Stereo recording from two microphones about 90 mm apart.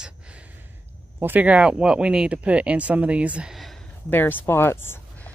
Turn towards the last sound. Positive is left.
turn(degrees=25)  # may be behind; listen again after turning